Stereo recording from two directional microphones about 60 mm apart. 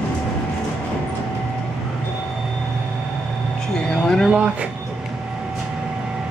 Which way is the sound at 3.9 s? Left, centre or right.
Centre.